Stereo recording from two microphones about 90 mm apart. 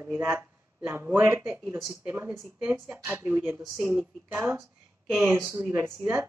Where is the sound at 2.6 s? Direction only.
15° right (ahead or behind).